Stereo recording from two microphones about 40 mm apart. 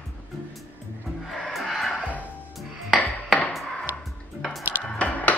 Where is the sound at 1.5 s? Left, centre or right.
Centre.